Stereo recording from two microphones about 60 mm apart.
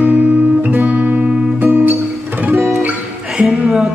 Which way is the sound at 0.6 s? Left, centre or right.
Right.